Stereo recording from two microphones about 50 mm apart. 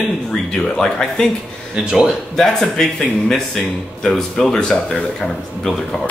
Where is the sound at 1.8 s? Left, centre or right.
Centre.